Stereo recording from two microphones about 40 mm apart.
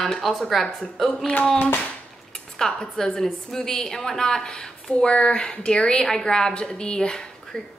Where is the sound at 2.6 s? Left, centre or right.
Centre.